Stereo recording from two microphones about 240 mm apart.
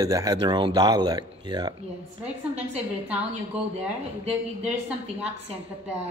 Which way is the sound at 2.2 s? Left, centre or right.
Centre.